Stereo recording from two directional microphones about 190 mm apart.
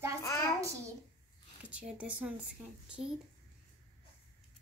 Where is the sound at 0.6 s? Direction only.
15° right (ahead or behind).